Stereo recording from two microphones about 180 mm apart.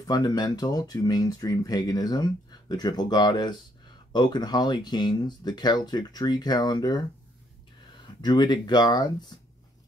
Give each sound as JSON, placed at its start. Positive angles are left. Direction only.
{"t": 0.0, "sound": "speech", "side_deg": 20}
{"t": 8.2, "sound": "speech", "side_deg": 25}